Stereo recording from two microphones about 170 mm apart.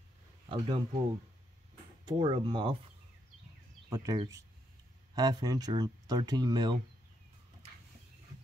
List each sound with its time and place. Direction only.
0.5 s speech: 30° right (ahead or behind)
2.0 s speech: 25° right (ahead or behind)
3.9 s speech: 20° right (ahead or behind)